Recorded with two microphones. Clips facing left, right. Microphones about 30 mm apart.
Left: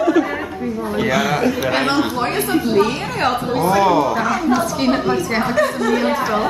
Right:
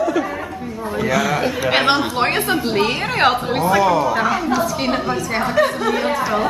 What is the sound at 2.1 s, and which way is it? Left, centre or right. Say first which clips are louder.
Speech: right 1 dB; right.